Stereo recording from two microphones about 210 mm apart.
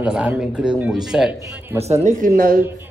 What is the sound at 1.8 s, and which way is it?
Speech, 35° right (ahead or behind).